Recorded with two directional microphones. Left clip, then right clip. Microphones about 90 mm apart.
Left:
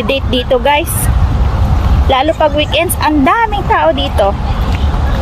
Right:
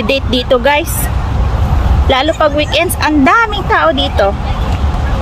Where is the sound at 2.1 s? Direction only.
45° right (ahead or behind).